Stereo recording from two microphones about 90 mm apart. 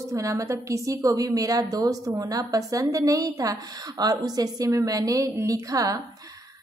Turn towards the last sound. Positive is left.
turn(degrees=-40)  # may be behind; listen again after turning